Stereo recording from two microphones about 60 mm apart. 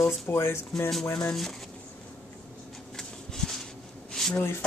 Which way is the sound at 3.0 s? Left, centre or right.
Centre.